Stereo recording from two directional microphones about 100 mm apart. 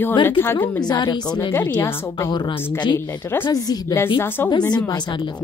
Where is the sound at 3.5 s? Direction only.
40° left (ahead or behind).